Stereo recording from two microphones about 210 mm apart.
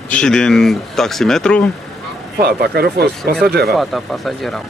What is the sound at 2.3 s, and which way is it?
Speech, 50° right (ahead or behind).